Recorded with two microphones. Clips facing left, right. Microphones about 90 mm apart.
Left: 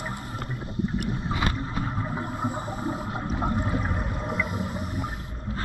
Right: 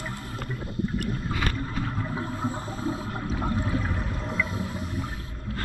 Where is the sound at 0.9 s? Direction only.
10° left (ahead or behind).